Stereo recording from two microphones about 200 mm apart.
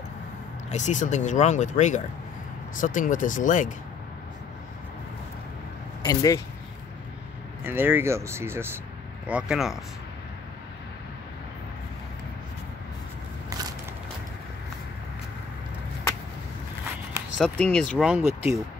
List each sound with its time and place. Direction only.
0.7 s speech: 35° left (ahead or behind)
6.0 s speech: 15° left (ahead or behind)
7.6 s speech: 10° right (ahead or behind)
13.5 s a sound: 20° right (ahead or behind)
17.4 s speech: 5° left (ahead or behind); by 18.6 s 10° right (ahead or behind)